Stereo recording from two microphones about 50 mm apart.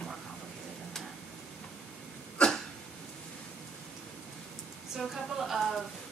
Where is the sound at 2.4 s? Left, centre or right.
Centre.